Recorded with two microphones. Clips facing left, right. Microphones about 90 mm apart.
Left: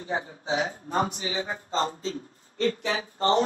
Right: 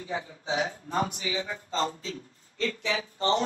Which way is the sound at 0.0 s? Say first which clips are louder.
Left 3 dB; 45° left (ahead or behind).